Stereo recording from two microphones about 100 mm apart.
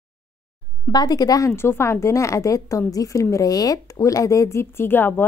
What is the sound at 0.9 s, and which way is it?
Speech, 40° left (ahead or behind).